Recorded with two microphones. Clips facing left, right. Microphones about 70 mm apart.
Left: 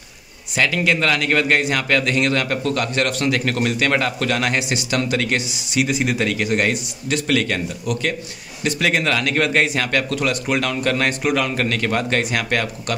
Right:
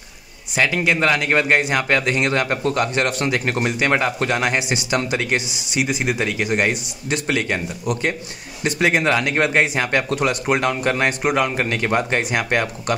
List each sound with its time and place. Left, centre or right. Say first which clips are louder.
0.6 s a man's voice: even; centre